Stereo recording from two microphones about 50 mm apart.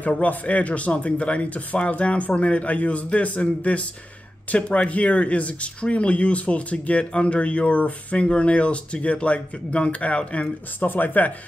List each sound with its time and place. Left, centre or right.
0.0 s speech: left
10.8 s speech: left